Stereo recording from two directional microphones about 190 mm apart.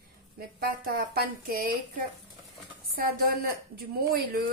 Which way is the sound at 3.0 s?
50° right (ahead or behind).